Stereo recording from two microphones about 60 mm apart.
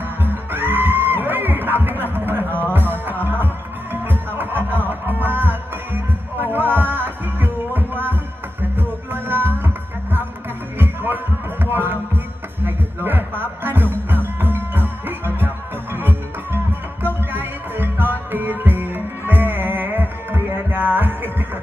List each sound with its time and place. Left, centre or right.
0.2 s music: right
2.1 s a sound: right
2.7 s music: right
10.8 s music: right